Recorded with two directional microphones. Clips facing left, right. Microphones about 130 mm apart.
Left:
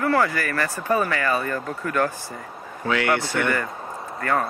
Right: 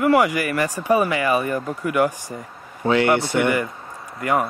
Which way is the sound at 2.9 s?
25° right (ahead or behind).